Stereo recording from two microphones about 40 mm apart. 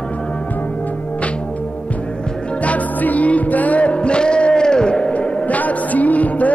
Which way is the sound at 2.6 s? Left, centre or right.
Left.